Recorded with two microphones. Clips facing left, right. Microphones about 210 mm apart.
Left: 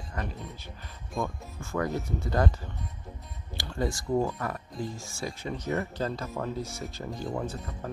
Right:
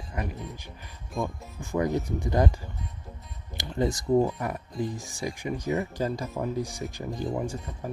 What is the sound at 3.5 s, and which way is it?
Speech, 20° right (ahead or behind).